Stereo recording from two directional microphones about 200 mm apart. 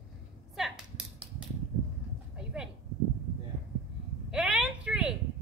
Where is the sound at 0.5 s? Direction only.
Centre (ahead or behind).